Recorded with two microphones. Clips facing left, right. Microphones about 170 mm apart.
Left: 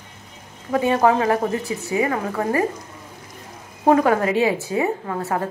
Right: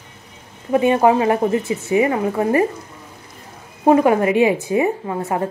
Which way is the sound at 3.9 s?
10° right (ahead or behind).